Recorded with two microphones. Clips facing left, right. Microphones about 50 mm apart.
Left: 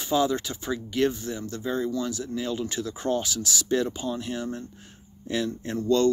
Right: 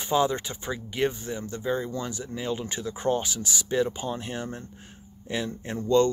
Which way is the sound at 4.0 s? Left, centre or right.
Right.